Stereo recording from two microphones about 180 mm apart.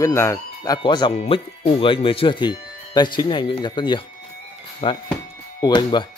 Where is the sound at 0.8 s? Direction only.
25° left (ahead or behind).